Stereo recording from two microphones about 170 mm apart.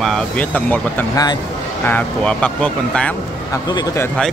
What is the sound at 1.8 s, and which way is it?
Speech, 10° left (ahead or behind).